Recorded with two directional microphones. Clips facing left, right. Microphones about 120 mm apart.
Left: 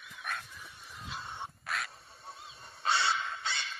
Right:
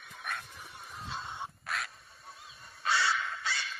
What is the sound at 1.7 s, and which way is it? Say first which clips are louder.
Goose: even; centre (ahead or behind).